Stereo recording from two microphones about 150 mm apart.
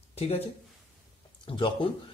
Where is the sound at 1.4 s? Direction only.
35° left (ahead or behind).